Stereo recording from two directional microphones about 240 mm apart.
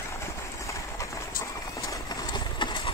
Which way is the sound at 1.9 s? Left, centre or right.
Centre.